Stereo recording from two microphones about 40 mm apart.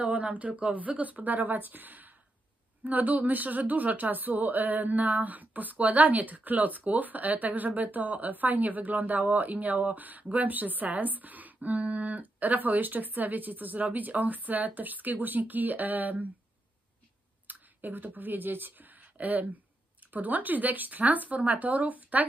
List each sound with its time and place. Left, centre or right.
0.0 s speech: right
17.5 s speech: right